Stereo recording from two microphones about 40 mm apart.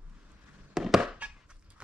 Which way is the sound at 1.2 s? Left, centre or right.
Right.